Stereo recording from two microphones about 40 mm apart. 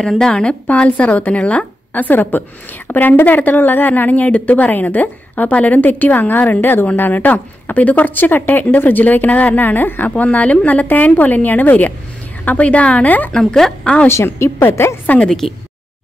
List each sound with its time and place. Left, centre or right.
0.2 s a woman's voice: left
2.0 s speech: left
6.6 s a woman's voice: left
7.0 s a woman's voice: left
13.3 s speech: centre
14.0 s a woman's voice: left
15.2 s speech: centre